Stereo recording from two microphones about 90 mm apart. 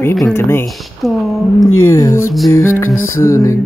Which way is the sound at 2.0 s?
35° left (ahead or behind).